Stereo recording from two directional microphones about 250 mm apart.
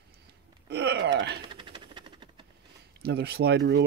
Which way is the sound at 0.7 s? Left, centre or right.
Right.